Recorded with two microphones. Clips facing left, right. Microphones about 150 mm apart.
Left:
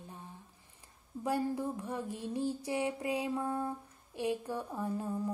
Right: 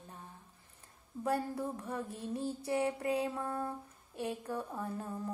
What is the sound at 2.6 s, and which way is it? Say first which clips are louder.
Speech: right 1 dB; 10° left (ahead or behind).